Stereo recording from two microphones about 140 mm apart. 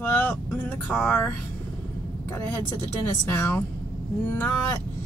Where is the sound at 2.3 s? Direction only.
15° left (ahead or behind).